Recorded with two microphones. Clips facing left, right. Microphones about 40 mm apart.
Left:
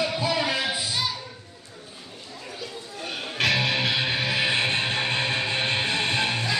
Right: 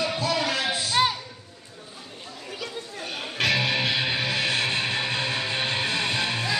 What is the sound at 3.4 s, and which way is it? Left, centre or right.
Music, centre.